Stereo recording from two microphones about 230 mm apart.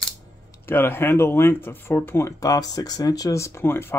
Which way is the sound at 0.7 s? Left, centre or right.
Centre.